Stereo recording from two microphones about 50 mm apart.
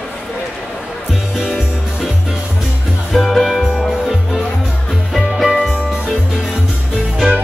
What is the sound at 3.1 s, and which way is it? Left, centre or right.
Music, centre.